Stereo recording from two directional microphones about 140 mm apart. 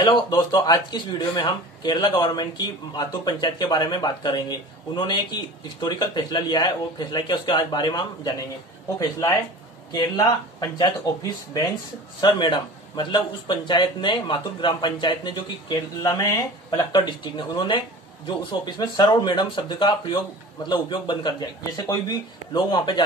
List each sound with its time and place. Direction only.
0.0 s speech: 30° left (ahead or behind)
12.2 s speech: 35° left (ahead or behind)
16.9 s speech: 35° left (ahead or behind)